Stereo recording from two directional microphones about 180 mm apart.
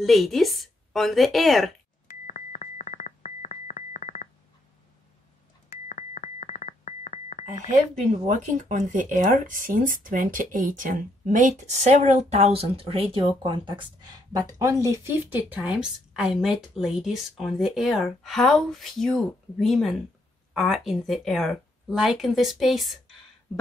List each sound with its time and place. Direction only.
0.0 s speech: centre (ahead or behind)
2.0 s telephone dialing: 45° left (ahead or behind)
5.9 s music: 45° left (ahead or behind)
8.0 s speech: 45° right (ahead or behind); by 22.9 s centre (ahead or behind)